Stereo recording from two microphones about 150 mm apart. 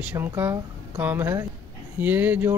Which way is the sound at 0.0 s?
15° right (ahead or behind).